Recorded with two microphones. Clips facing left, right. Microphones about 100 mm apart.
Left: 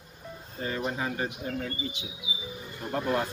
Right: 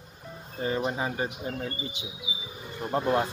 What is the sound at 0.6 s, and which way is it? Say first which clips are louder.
Speech: right 3 dB; 25° right (ahead or behind).